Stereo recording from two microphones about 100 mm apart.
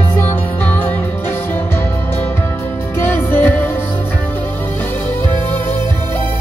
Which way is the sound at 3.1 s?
20° left (ahead or behind).